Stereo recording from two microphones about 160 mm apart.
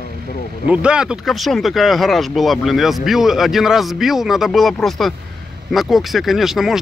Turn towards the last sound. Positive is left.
turn(degrees=0)  # may be behind; listen again after turning